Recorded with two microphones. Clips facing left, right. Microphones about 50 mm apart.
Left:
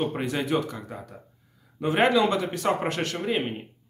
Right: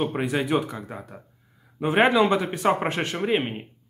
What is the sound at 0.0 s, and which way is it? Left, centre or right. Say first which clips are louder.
Speech: right 2 dB; centre.